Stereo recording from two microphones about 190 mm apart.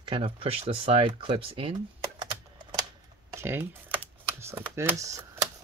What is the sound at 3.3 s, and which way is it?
Speech, 10° right (ahead or behind).